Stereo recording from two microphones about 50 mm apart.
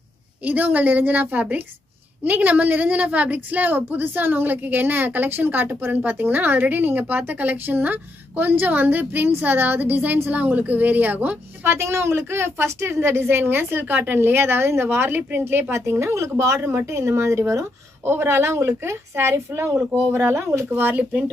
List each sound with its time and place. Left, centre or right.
0.4 s a woman's voice: right
11.6 s a woman's voice: right
15.7 s a woman's voice: right
16.2 s speech: right
18.0 s a woman's voice: right
18.8 s a woman's voice: right
20.7 s speech: right